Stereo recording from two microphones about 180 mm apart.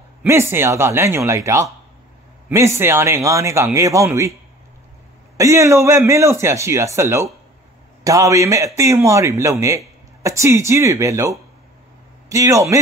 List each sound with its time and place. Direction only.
0.2 s a man's voice: 15° right (ahead or behind)
5.4 s a man's voice: 15° right (ahead or behind)